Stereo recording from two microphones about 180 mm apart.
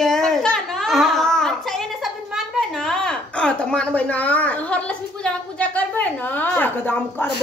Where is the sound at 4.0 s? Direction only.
10° left (ahead or behind).